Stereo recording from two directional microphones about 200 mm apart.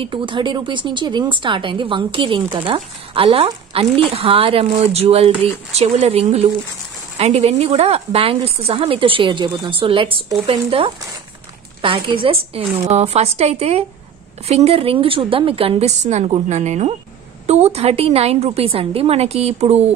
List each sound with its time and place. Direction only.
0.0 s a woman's voice: 25° right (ahead or behind)